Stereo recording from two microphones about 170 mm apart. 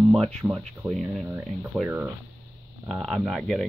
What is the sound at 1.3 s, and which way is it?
Speech, 10° right (ahead or behind).